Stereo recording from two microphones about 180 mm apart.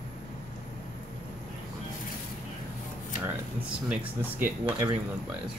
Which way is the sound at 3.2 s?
5° right (ahead or behind).